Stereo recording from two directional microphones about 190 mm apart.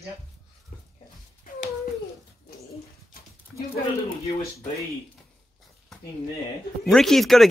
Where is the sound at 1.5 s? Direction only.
45° left (ahead or behind).